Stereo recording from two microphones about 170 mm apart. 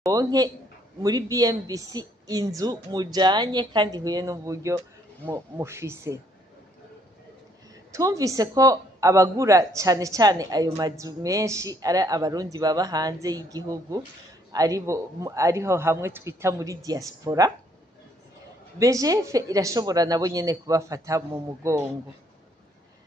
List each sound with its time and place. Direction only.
0.0 s a man's voice: 20° right (ahead or behind)
7.9 s speech: 20° right (ahead or behind)
18.8 s speech: 20° right (ahead or behind)